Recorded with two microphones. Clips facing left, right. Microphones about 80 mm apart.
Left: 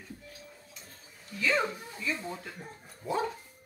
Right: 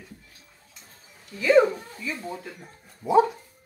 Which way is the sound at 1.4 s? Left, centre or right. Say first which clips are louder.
Right 11 dB; centre.